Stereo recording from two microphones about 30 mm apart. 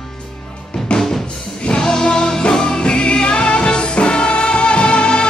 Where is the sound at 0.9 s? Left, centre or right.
Centre; by 5.2 s left.